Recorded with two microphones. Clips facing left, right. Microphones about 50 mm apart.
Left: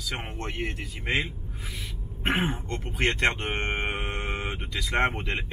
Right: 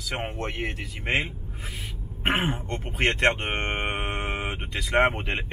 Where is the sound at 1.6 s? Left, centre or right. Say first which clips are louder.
Right 1 dB; right.